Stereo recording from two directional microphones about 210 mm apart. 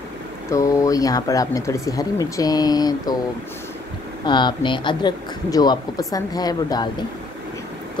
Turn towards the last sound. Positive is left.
turn(degrees=20)  # may be behind; listen again after turning